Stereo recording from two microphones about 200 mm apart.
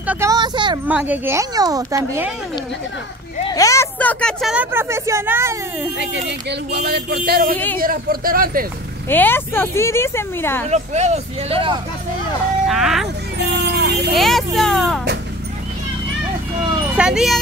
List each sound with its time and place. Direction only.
0.0 s a sound: 5° right (ahead or behind)
0.3 s speech: 20° right (ahead or behind)
0.8 s speech: 10° right (ahead or behind)
3.5 s speech: 15° left (ahead or behind); by 5.6 s 10° right (ahead or behind)
5.9 s speech: 60° right (ahead or behind)
7.5 s speech: 10° left (ahead or behind)
7.8 s speech: 45° right (ahead or behind)
9.1 s speech: 10° left (ahead or behind)
10.7 s speech: 35° right (ahead or behind)
12.6 s speech: centre (ahead or behind)
13.4 s vehicle: 55° right (ahead or behind)
14.1 s speech: centre (ahead or behind)
16.9 s speech: 5° right (ahead or behind)